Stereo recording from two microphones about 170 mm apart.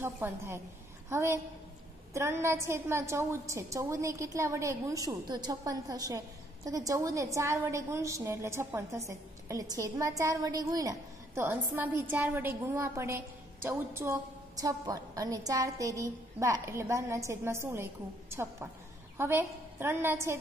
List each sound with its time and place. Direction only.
0.0 s a woman's voice: 15° right (ahead or behind)